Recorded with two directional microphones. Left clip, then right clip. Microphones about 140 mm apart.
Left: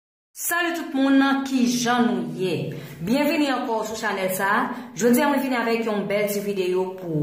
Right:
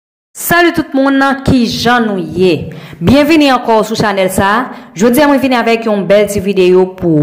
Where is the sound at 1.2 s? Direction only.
35° right (ahead or behind).